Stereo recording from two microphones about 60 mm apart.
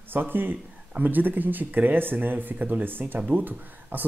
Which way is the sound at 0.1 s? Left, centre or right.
Right.